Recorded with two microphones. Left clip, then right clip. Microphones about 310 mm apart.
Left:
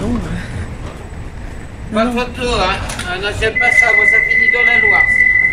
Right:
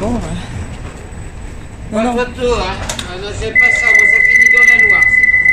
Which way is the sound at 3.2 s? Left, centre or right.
Left.